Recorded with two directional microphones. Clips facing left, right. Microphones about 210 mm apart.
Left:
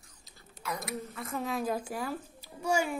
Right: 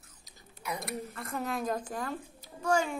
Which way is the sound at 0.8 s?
Centre (ahead or behind).